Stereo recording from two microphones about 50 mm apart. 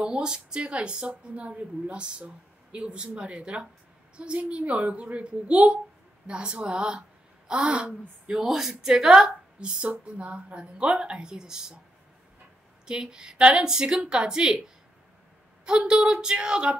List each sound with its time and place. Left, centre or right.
0.0 s a woman's voice: centre
8.4 s a woman's voice: centre
12.8 s a woman's voice: centre
15.6 s a woman's voice: centre